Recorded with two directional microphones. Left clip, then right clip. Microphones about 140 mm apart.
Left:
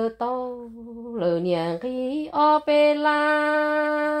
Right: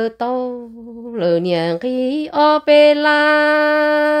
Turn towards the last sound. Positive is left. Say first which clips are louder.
# right 8 dB
turn(degrees=-35)  # may be behind; listen again after turning